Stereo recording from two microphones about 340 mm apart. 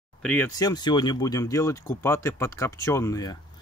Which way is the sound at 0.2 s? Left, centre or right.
Centre.